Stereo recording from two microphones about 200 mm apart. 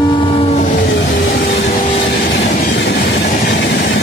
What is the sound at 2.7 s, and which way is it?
Train, 55° left (ahead or behind).